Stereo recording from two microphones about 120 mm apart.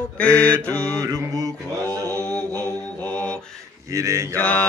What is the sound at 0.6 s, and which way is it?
Mantra, 10° left (ahead or behind).